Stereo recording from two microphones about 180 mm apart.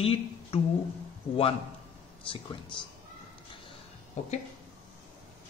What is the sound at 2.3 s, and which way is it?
Speech, 25° left (ahead or behind).